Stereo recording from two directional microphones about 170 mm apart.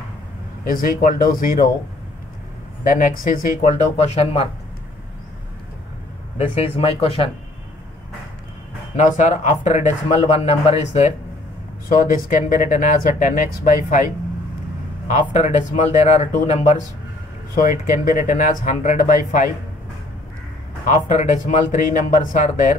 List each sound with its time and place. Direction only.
0.7 s speech: 55° left (ahead or behind)
2.8 s speech: 55° left (ahead or behind); by 4.5 s 35° left (ahead or behind)
6.3 s speech: 35° left (ahead or behind)
8.9 s speech: 50° left (ahead or behind)
15.3 s speech: 45° left (ahead or behind)
17.6 s speech: 55° left (ahead or behind)
20.9 s speech: 45° left (ahead or behind)